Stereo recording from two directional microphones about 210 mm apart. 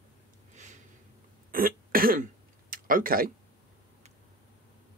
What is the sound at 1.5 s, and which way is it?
Cough, 45° right (ahead or behind).